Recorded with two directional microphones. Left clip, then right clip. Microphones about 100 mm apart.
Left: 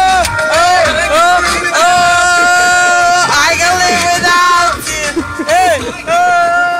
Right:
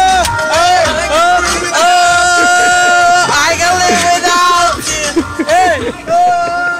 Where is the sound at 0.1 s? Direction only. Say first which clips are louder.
Even; 5° right (ahead or behind).